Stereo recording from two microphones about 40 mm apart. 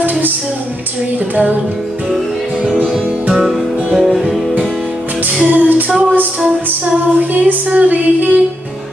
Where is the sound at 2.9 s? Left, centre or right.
Right.